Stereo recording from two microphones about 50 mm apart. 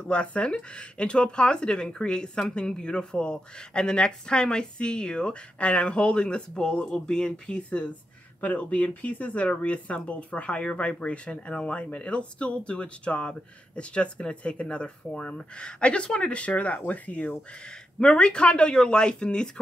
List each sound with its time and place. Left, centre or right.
0.0 s speech: left
18.1 s speech: centre